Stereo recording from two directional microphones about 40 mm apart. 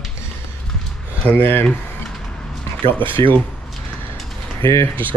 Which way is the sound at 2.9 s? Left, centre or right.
Left.